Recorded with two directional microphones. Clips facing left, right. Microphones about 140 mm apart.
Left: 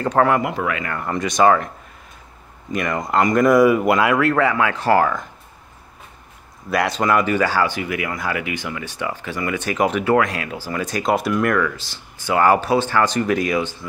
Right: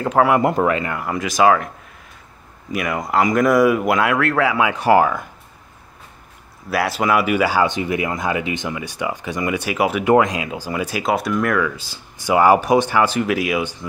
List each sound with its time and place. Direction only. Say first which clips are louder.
0.0 s speech: right 1 dB; 5° right (ahead or behind)
0.4 s speech: right 6 dB; 40° right (ahead or behind)
0.9 s speech: even; 5° right (ahead or behind)
2.7 s speech: even; 5° right (ahead or behind)
4.6 s speech: right 2 dB; 15° right (ahead or behind)
6.7 s speech: even; 5° right (ahead or behind)
10.1 s speech: right 3 dB; 15° right (ahead or behind); by 11.6 s centre (ahead or behind)
11.6 s speech: even; 15° right (ahead or behind)